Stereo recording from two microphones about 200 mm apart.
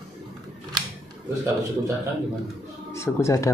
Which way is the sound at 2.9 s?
15° left (ahead or behind).